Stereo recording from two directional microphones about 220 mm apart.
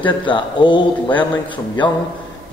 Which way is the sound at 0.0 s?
20° left (ahead or behind).